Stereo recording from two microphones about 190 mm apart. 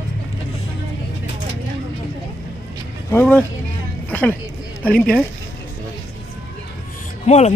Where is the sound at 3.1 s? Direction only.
10° left (ahead or behind).